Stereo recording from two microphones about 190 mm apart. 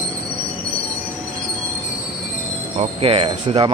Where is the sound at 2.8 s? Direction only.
30° right (ahead or behind).